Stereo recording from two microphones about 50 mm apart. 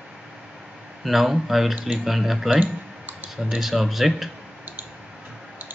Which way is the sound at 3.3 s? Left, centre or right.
Centre.